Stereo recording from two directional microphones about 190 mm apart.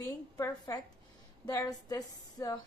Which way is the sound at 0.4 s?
20° left (ahead or behind).